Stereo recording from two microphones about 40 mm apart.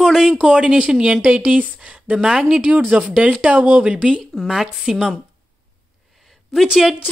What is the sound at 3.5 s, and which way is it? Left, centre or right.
Speech, right.